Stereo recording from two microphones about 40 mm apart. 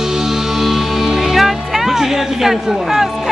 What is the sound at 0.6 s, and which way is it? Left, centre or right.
Music, centre.